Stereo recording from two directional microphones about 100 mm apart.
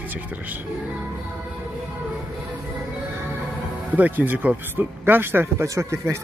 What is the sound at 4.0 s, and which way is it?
Speech, 20° right (ahead or behind).